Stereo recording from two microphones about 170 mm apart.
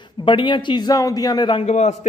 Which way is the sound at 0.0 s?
30° left (ahead or behind).